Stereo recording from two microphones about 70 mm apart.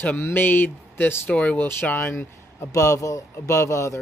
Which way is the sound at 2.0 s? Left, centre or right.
Left.